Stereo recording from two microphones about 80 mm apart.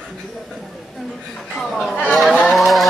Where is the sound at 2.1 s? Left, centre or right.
Centre.